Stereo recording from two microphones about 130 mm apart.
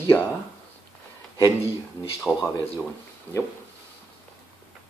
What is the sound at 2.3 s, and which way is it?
Speech, 5° left (ahead or behind).